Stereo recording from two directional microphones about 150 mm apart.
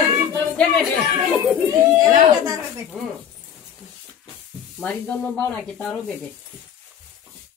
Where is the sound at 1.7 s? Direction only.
20° right (ahead or behind).